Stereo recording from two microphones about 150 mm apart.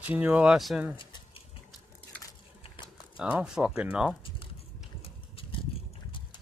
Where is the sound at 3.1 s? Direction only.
5° right (ahead or behind).